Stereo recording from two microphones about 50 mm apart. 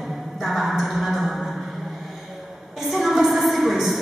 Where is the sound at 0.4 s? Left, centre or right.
Centre.